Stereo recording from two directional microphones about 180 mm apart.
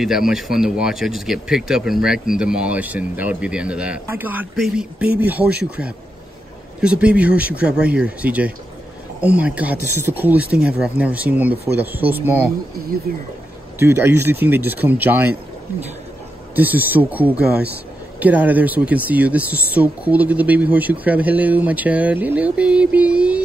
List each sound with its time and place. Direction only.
0.0 s speech: centre (ahead or behind)
6.8 s speech: 5° right (ahead or behind)
13.1 s speech: 55° right (ahead or behind)
13.7 s speech: 15° right (ahead or behind)
16.5 s speech: 10° right (ahead or behind)